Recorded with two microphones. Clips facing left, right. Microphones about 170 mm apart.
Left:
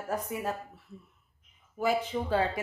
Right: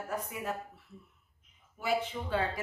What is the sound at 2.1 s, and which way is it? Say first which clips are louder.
Speech: left 7 dB; 40° left (ahead or behind).